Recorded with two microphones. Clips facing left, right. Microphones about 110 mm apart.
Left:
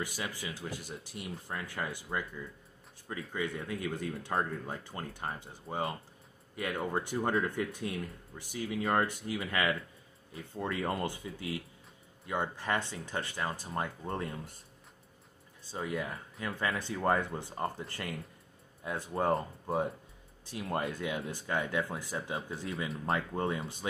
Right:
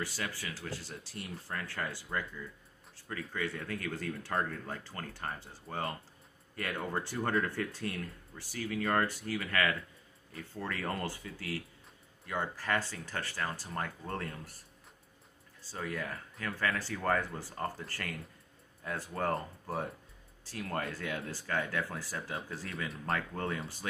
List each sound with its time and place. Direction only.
0.0 s speech: 15° left (ahead or behind)
15.6 s speech: 20° left (ahead or behind)